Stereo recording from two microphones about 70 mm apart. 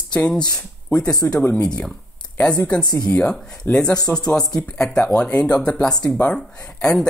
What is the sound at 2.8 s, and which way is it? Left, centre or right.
Speech, left.